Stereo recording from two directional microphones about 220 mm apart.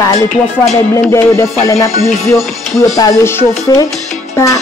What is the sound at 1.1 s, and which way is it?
Speech, 15° left (ahead or behind).